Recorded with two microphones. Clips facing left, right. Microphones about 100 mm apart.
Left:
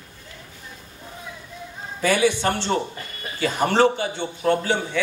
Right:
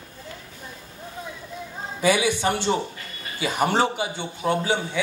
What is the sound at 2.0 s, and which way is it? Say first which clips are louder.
A man's voice: left 1 dB; 15° right (ahead or behind).